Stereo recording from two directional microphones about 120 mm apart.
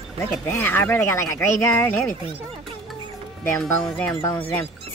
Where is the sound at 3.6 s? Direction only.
Centre (ahead or behind).